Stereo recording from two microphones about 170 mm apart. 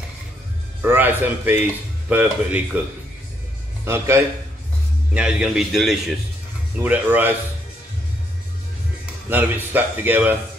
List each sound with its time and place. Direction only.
0.8 s a man's voice: 10° right (ahead or behind)
3.8 s a man's voice: 15° right (ahead or behind); by 6.1 s centre (ahead or behind)
6.8 s a man's voice: 10° right (ahead or behind)
9.3 s a man's voice: 10° right (ahead or behind)